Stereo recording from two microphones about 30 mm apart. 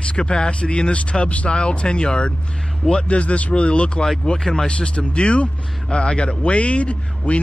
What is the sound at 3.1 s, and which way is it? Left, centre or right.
Speech, left.